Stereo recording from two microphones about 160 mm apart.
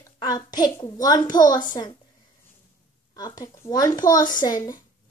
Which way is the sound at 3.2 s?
25° left (ahead or behind).